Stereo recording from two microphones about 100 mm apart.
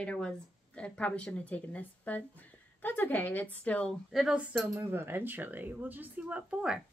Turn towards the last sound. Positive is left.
turn(degrees=-10)  # may be behind; listen again after turning